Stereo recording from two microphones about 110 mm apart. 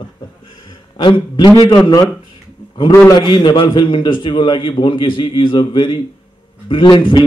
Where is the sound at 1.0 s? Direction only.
45° left (ahead or behind).